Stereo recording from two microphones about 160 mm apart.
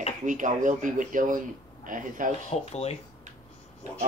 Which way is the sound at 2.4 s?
40° left (ahead or behind).